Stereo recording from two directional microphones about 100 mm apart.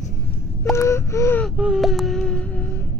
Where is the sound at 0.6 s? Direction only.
30° left (ahead or behind).